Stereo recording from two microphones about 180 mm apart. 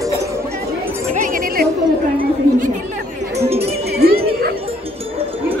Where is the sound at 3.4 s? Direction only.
35° right (ahead or behind).